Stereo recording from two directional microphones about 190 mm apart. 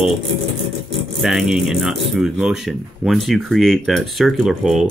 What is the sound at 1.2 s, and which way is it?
Speech, centre (ahead or behind).